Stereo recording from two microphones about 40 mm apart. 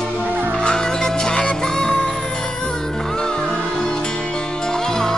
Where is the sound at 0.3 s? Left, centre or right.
Right.